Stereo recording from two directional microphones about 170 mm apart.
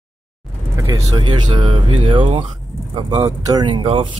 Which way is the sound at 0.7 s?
25° right (ahead or behind).